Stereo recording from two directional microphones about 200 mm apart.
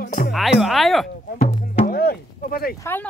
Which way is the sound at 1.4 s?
35° left (ahead or behind).